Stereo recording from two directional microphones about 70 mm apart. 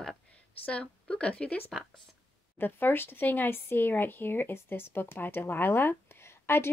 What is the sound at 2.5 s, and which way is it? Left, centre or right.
Speech, left.